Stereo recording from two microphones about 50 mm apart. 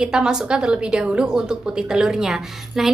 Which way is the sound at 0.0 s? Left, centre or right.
Centre.